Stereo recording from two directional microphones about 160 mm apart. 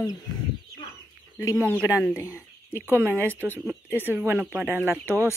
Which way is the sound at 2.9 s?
15° right (ahead or behind).